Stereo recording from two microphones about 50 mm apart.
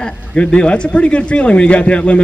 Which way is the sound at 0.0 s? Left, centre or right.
Centre.